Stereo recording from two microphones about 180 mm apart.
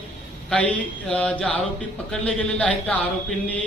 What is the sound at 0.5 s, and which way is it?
A man's voice, 5° left (ahead or behind).